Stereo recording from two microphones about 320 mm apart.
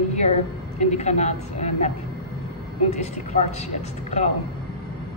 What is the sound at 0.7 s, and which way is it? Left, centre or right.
A woman's voice, left.